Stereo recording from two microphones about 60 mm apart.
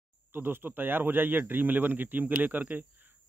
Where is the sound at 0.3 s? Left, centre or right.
Right.